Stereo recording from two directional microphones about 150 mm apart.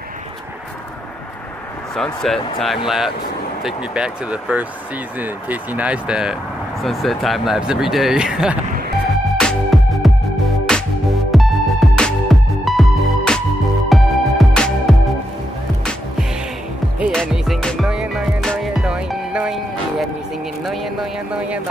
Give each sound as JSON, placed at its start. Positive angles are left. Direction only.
{"t": 2.0, "sound": "speech", "side_deg": 0}
{"t": 9.4, "sound": "music", "side_deg": 0}
{"t": 20.6, "sound": "a sound", "side_deg": 0}